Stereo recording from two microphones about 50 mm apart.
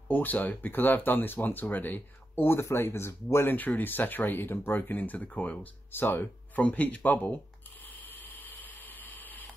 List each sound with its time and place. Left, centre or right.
0.1 s speech: left
3.4 s speech: left
6.5 s speech: left
8.0 s a sound: left